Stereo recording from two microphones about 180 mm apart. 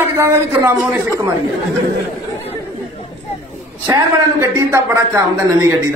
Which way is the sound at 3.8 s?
20° right (ahead or behind).